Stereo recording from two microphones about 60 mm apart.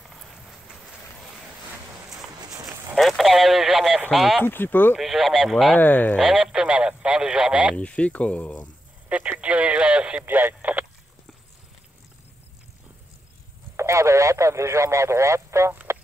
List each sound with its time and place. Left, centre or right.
0.0 s vehicle: centre
2.0 s walk: right
3.0 s speech: centre
4.5 s speech: left
4.9 s speech: centre
5.8 s speech: left
6.1 s speech: centre
7.7 s speech: centre
9.4 s speech: right
10.2 s speech: right
13.7 s speech: right